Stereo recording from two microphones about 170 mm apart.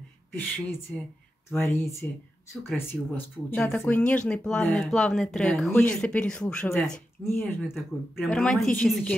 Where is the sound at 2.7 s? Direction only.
10° left (ahead or behind).